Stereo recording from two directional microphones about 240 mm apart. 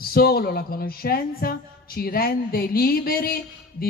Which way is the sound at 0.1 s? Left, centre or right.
Left.